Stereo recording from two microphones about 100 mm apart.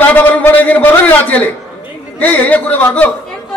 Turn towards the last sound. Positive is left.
turn(degrees=15)  # may be behind; listen again after turning